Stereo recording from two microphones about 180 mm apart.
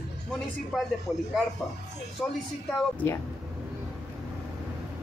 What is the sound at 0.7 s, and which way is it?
Speech, centre (ahead or behind).